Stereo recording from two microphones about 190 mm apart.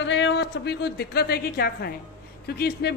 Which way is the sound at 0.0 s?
75° left (ahead or behind).